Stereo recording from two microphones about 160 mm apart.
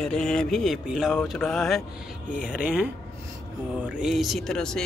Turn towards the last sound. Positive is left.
turn(degrees=5)  # may be behind; listen again after turning